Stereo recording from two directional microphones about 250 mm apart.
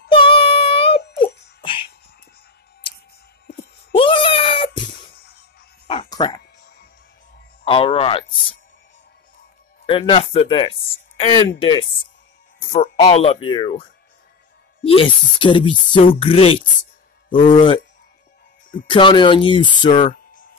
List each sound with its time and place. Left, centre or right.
0.1 s music: left
3.9 s a sound: left
5.9 s a sound: centre
7.6 s speech: left
9.8 s speech: left
18.9 s speech: centre
20.0 s music: left